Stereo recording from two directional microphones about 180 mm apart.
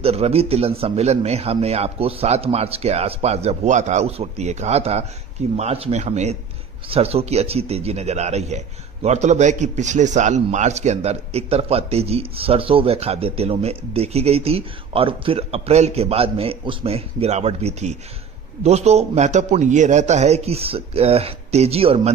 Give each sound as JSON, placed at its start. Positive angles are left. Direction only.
{"t": 0.0, "sound": "a man's voice", "side_deg": -35}